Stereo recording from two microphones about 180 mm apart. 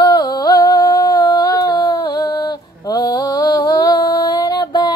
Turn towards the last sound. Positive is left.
turn(degrees=25)  # may be behind; listen again after turning